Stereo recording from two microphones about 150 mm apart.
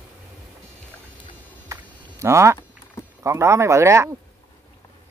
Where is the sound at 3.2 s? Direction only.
20° right (ahead or behind).